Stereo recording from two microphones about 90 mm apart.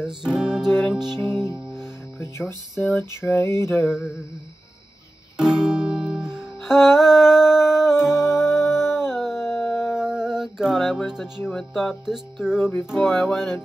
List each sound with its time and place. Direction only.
0.0 s music: 5° right (ahead or behind)
1.8 s music: 30° left (ahead or behind)
3.0 s a sound: 30° left (ahead or behind)
5.4 s music: 10° right (ahead or behind)
8.3 s music: 30° left (ahead or behind)
8.9 s howl: 5° right (ahead or behind)
9.4 s music: centre (ahead or behind)
11.1 s speech: 5° right (ahead or behind)
11.5 s music: centre (ahead or behind)